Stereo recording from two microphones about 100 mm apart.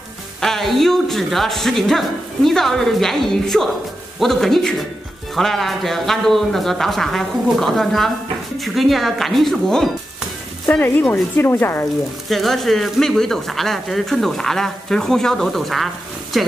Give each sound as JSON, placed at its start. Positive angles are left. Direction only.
{"t": 0.4, "sound": "speech", "side_deg": 0}
{"t": 10.7, "sound": "speech", "side_deg": 15}
{"t": 12.3, "sound": "speech", "side_deg": 0}